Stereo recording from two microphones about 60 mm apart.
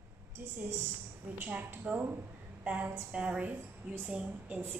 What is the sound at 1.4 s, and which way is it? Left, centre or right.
Speech, right.